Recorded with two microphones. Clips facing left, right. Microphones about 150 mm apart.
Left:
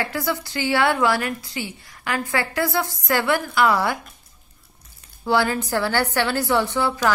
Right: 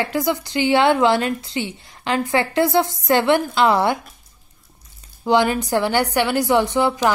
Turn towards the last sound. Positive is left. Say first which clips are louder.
# right 4 dB
turn(degrees=-15)  # may be behind; listen again after turning